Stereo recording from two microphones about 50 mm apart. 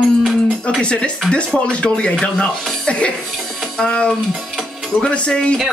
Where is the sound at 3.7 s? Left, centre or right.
Centre.